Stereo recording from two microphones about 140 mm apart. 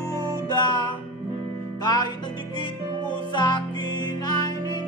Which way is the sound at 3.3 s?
30° left (ahead or behind).